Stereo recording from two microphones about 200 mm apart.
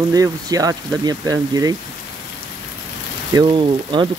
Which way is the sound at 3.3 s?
25° right (ahead or behind).